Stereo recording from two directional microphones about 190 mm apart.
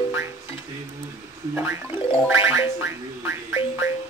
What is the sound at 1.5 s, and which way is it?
Speech, 10° right (ahead or behind).